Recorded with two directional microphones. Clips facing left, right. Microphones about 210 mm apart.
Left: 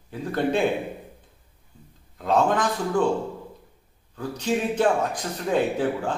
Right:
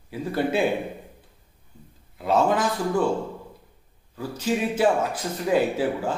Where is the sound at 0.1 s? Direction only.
5° right (ahead or behind).